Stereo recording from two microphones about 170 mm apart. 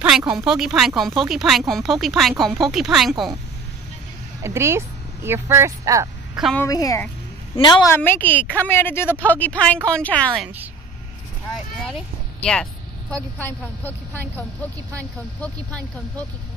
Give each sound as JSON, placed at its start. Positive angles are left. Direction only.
{"t": 0.2, "sound": "speech", "side_deg": -15}
{"t": 0.5, "sound": "speech", "side_deg": -5}
{"t": 4.4, "sound": "speech", "side_deg": -15}
{"t": 6.5, "sound": "a woman's voice", "side_deg": 15}
{"t": 7.9, "sound": "speech", "side_deg": 10}
{"t": 11.8, "sound": "speech", "side_deg": 5}